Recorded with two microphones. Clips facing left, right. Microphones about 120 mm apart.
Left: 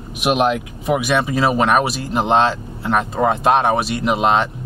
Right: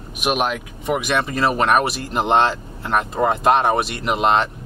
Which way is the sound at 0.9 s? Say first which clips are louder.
Left 3 dB; centre (ahead or behind).